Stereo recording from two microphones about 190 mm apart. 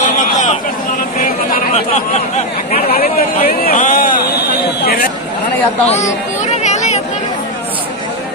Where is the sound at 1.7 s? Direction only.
35° left (ahead or behind).